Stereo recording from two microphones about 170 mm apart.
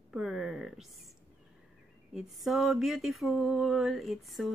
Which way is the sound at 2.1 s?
Centre (ahead or behind).